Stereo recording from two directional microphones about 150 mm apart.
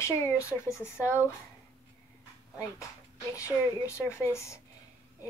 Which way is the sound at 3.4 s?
20° left (ahead or behind).